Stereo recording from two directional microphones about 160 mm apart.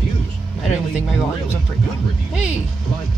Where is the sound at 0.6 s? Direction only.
Centre (ahead or behind).